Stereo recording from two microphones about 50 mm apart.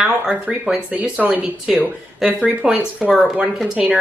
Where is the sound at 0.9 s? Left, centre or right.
Right.